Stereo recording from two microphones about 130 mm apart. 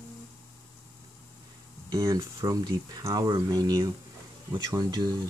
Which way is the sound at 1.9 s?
25° right (ahead or behind).